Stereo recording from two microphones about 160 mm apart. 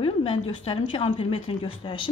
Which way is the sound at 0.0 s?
35° left (ahead or behind).